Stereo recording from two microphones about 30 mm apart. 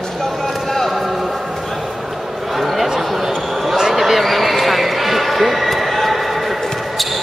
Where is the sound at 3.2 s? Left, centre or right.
Centre.